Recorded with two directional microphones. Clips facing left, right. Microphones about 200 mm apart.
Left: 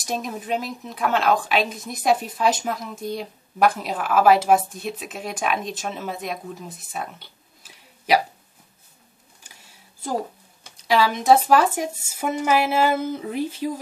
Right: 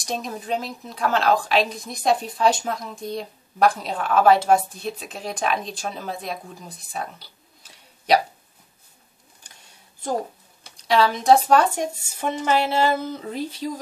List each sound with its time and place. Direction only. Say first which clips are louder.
0.0 s a woman's voice: left 1 dB; 5° left (ahead or behind)
10.9 s speech: even; 5° left (ahead or behind)